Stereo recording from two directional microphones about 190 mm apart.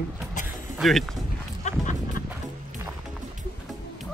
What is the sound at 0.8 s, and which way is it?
Speech, centre (ahead or behind).